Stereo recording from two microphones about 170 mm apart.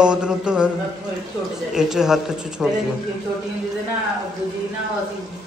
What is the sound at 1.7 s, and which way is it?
Speech, 5° right (ahead or behind).